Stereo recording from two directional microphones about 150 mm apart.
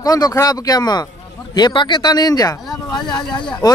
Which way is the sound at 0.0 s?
25° left (ahead or behind).